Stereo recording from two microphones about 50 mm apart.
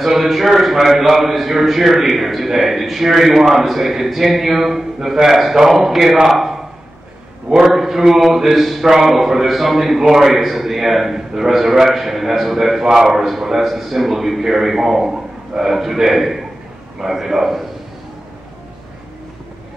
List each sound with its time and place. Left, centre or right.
0.0 s speech: centre
6.3 s a sound: centre
7.5 s speech: centre